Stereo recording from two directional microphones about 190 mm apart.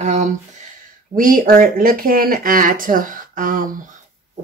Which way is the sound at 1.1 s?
45° right (ahead or behind).